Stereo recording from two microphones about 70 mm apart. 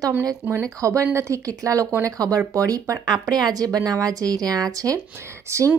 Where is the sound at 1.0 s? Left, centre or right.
Right.